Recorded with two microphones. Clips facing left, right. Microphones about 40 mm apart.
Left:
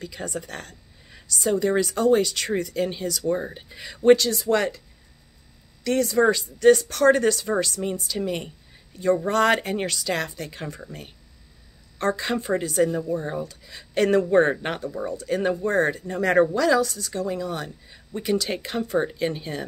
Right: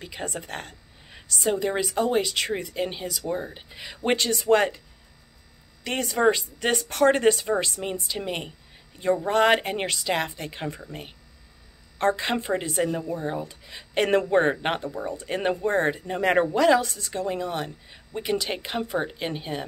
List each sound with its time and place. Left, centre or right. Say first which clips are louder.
0.0 s speech: left 1 dB; right; by 4.1 s centre
4.1 s speech: left 4 dB; right
5.9 s speech: left 2 dB; right
9.1 s speech: even; centre
13.1 s speech: left 2 dB; centre